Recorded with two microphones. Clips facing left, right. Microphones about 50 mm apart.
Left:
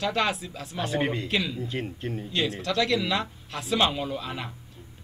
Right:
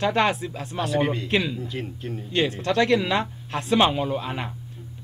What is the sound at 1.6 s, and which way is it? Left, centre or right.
Speech, left.